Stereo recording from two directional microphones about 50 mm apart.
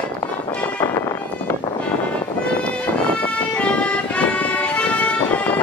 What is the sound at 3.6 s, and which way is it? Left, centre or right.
Music, left.